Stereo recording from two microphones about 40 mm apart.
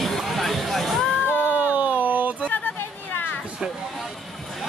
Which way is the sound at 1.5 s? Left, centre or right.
Right.